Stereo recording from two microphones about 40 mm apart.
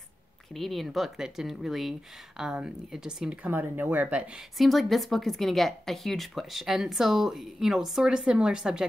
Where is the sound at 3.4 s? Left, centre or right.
Right.